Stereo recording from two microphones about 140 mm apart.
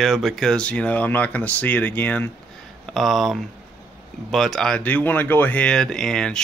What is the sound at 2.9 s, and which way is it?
Speech, centre (ahead or behind).